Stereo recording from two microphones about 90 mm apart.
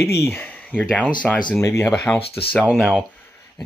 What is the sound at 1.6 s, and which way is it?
Speech, 35° left (ahead or behind).